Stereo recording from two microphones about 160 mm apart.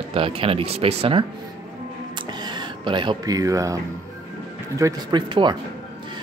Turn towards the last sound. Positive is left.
turn(degrees=-30)  # may be behind; listen again after turning